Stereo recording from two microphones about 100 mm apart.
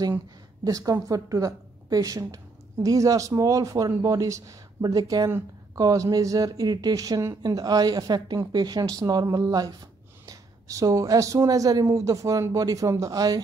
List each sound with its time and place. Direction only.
0.7 s a woman's voice: 35° right (ahead or behind)